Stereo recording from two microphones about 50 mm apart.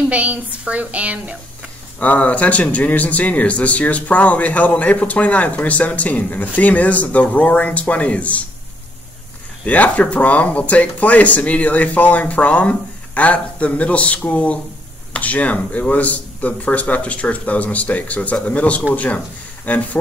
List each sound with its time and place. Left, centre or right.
0.1 s speech: right
2.0 s speech: left
9.7 s speech: left